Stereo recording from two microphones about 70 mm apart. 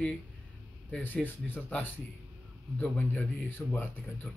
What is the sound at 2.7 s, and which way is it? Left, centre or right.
Speech, left.